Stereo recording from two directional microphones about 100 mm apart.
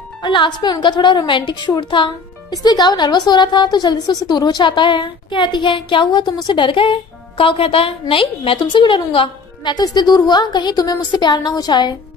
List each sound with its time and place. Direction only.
0.2 s a woman's voice: 50° left (ahead or behind)
2.5 s a woman's voice: 45° left (ahead or behind)
9.9 s a woman's voice: 45° left (ahead or behind)